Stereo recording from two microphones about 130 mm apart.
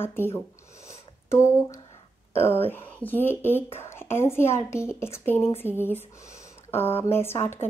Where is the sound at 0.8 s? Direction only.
20° left (ahead or behind).